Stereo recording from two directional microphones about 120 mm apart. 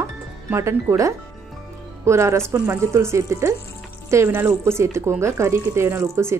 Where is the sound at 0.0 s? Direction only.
25° right (ahead or behind).